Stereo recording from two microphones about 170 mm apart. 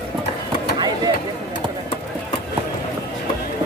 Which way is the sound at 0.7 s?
25° right (ahead or behind).